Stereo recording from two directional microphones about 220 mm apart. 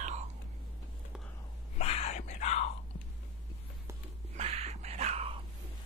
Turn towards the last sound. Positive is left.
turn(degrees=-25)  # may be behind; listen again after turning